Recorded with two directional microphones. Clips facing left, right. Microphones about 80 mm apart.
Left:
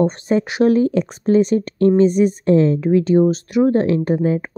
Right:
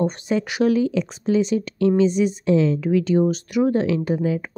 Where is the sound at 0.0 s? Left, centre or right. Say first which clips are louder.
Left 5 dB; left.